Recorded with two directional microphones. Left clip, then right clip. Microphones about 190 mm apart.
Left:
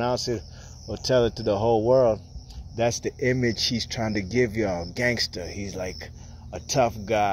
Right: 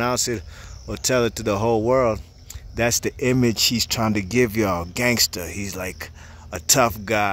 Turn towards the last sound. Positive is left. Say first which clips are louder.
# right 3 dB
turn(degrees=-40)  # may be behind; listen again after turning